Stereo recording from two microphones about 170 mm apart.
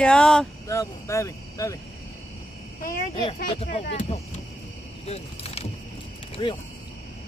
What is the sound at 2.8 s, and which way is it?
Speech, 55° left (ahead or behind).